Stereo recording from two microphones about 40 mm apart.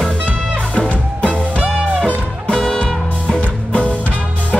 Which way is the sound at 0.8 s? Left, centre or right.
Left.